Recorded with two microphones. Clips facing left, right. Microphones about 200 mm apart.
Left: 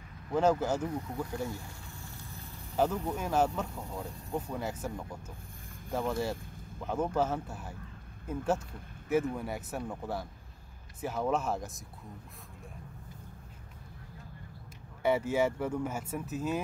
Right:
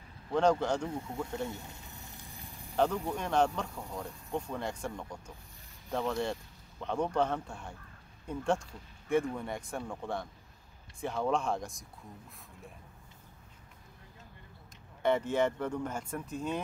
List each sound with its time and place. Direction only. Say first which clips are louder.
0.3 s speech: even; 5° left (ahead or behind)
0.8 s speech: left 1 dB; 25° right (ahead or behind)
1.5 s snake: left 1 dB; 20° right (ahead or behind)
2.7 s speech: even; 5° left (ahead or behind)
15.0 s speech: left 1 dB; 10° left (ahead or behind)